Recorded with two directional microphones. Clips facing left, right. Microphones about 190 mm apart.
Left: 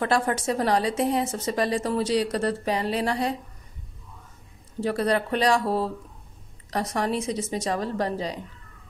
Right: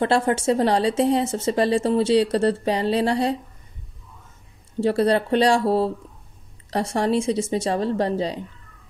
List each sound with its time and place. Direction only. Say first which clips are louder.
0.0 s speech: right 4 dB; 25° right (ahead or behind)
4.7 s speech: right 5 dB; 30° right (ahead or behind)